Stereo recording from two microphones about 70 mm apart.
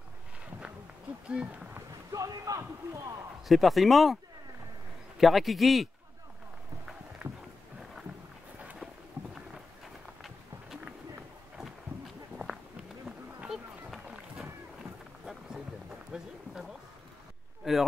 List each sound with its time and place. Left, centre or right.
1.2 s speech: centre
2.1 s speech: right
3.4 s speech: centre
10.9 s run: centre
13.1 s a sound: centre
13.5 s run: centre
14.0 s boat: centre